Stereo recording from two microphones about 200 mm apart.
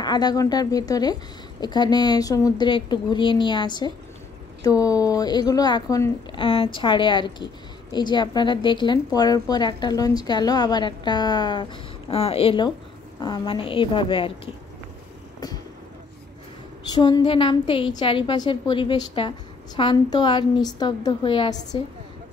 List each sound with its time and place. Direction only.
0.0 s a woman's voice: 20° left (ahead or behind)
16.9 s a woman's voice: 20° left (ahead or behind)